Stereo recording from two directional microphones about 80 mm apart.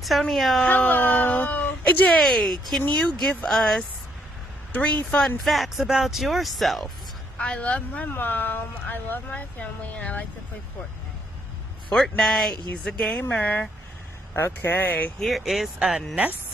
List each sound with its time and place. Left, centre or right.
0.2 s speech: centre
0.6 s speech: left
2.1 s speech: centre
4.7 s speech: centre
5.2 s speech: centre
7.3 s speech: centre
11.9 s speech: centre
14.3 s speech: left
15.1 s speech: centre